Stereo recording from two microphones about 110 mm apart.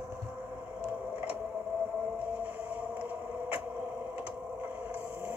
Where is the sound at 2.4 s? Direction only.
15° right (ahead or behind).